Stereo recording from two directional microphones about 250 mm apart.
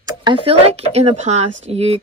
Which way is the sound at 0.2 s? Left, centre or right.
Right.